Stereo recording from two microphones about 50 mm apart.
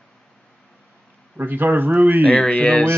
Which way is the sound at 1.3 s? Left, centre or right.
Right.